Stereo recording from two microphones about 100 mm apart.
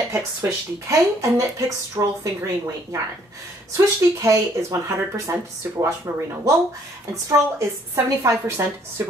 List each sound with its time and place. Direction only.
0.1 s a woman's voice: 30° right (ahead or behind)